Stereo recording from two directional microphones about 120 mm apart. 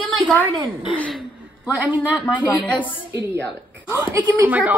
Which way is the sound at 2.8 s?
15° right (ahead or behind).